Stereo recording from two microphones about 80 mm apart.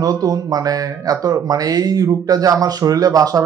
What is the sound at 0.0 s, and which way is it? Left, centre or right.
Speech, right.